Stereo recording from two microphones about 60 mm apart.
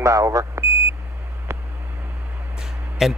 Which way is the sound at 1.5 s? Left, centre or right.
Right.